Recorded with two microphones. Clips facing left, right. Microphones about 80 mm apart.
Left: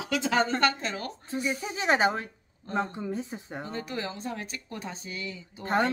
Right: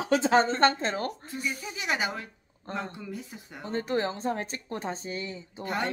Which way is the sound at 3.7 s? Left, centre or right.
Right.